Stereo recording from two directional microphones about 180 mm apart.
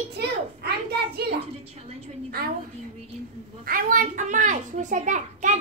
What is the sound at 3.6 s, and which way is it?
A child's voice, 50° right (ahead or behind).